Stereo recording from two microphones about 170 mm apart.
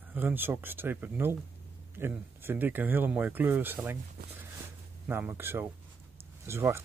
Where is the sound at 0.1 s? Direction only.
10° right (ahead or behind).